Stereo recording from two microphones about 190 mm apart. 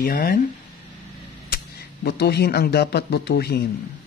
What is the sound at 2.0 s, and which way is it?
Speech, 60° left (ahead or behind).